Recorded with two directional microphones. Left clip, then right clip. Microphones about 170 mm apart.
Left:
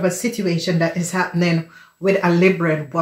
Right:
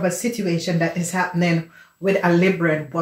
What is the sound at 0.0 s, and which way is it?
Speech, 35° left (ahead or behind).